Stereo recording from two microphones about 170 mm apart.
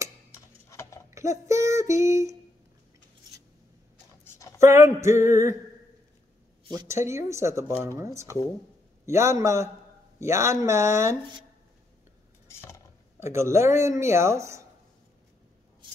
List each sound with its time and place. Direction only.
0.7 s clip-clop: 15° left (ahead or behind)
1.1 s speech: 20° right (ahead or behind)
4.2 s a sound: 20° left (ahead or behind)
4.6 s speech: 15° right (ahead or behind)
6.7 s speech: 20° right (ahead or behind)
12.4 s stir: 15° left (ahead or behind)
13.2 s speech: 15° right (ahead or behind)